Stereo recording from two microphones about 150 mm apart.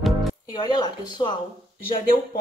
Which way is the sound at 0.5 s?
30° left (ahead or behind).